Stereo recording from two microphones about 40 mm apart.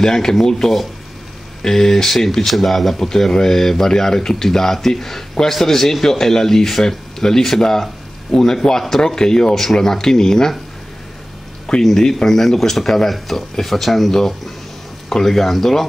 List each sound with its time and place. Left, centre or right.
0.0 s speech: centre
11.8 s speech: centre